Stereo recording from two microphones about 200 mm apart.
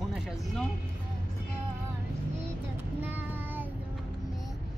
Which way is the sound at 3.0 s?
10° right (ahead or behind).